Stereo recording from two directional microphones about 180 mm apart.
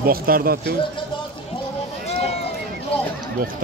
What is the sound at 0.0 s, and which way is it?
Speech, 55° right (ahead or behind).